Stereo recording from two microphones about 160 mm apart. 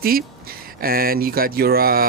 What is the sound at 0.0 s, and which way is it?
Speech, 70° right (ahead or behind).